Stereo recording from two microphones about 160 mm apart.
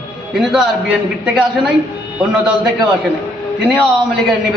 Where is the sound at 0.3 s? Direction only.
5° right (ahead or behind).